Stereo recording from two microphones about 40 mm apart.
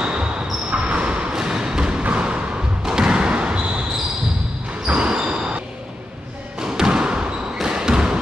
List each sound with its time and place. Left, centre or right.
0.0 s basketball bounce: right
1.3 s a sound: centre
2.0 s basketball bounce: right
4.8 s basketball bounce: right
6.6 s basketball bounce: centre
7.6 s trickle: centre